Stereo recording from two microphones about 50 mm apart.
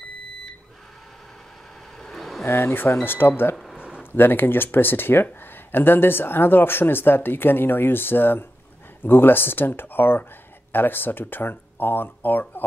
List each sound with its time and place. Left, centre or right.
2.0 s vehicle: centre
2.4 s speech: left
3.7 s a sound: right
4.0 s speech: left